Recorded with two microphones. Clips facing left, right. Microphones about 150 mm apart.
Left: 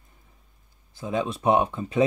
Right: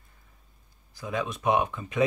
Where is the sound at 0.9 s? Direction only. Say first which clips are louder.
Left 4 dB; 25° left (ahead or behind).